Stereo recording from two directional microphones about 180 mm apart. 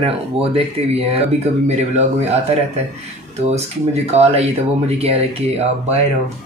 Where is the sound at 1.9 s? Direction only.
40° right (ahead or behind).